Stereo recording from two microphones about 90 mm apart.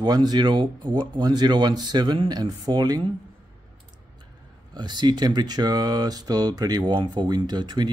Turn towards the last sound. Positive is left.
turn(degrees=-55)  # may be behind; listen again after turning